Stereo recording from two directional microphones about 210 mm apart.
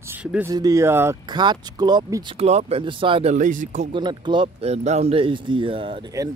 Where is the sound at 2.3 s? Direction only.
30° right (ahead or behind).